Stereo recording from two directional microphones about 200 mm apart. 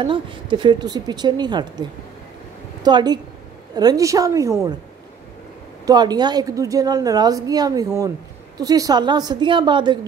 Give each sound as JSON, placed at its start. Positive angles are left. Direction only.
{"t": 0.0, "sound": "a woman's voice", "side_deg": -25}
{"t": 5.9, "sound": "a woman's voice", "side_deg": -20}